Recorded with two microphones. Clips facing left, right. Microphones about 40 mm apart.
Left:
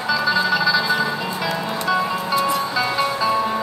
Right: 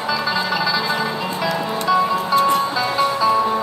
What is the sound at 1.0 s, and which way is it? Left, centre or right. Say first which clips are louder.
Music: even; centre.